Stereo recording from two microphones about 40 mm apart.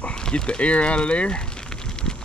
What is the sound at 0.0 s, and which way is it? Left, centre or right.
Speech, left.